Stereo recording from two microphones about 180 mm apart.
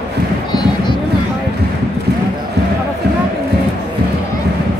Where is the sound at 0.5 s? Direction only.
25° left (ahead or behind).